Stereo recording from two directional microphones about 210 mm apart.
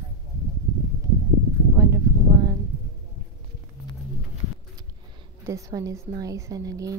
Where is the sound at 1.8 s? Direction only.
15° right (ahead or behind).